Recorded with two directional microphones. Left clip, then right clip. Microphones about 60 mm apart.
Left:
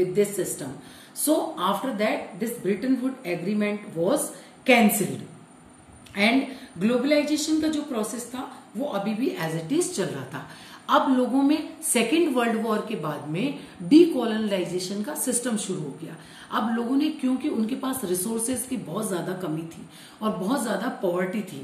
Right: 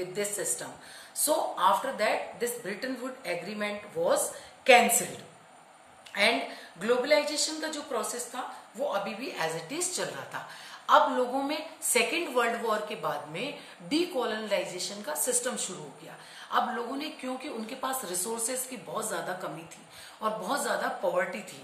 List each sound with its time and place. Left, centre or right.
0.1 s a woman's voice: right
2.4 s a woman's voice: right
6.1 s a woman's voice: right
9.7 s a woman's voice: centre
17.7 s a woman's voice: right